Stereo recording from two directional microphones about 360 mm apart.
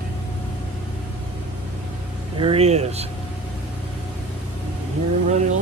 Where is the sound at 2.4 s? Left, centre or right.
Centre.